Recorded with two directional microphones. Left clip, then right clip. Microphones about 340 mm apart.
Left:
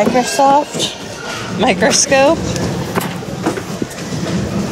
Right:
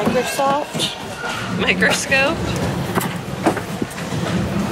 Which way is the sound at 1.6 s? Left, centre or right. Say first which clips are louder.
Left 5 dB; centre.